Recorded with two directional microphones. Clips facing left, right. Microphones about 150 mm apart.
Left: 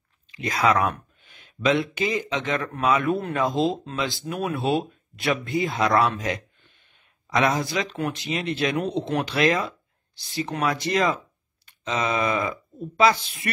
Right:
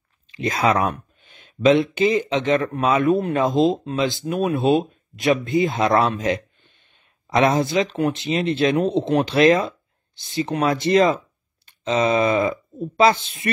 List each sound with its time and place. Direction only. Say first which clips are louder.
0.4 s speech: right 2 dB; 25° right (ahead or behind)